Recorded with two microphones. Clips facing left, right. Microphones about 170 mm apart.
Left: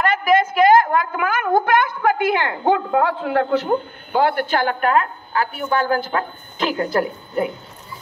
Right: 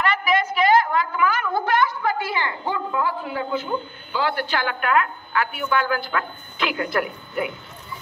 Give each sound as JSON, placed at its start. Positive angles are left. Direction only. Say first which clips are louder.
{"t": 0.0, "sound": "a woman's voice", "louder": "left 5 dB", "side_deg": 45}